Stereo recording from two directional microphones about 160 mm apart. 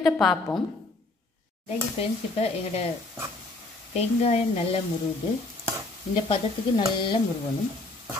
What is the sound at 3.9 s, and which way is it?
Speech, 40° left (ahead or behind).